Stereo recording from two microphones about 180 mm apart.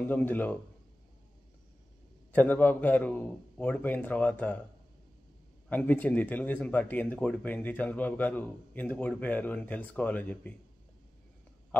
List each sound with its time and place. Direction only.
0.0 s speech: 10° left (ahead or behind)
2.3 s speech: 10° left (ahead or behind)
5.7 s speech: 10° left (ahead or behind)